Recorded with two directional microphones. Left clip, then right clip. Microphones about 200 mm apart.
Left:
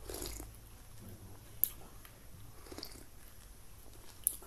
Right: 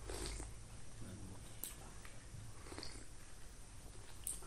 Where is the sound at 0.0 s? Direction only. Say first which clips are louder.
Left 3 dB; 45° left (ahead or behind).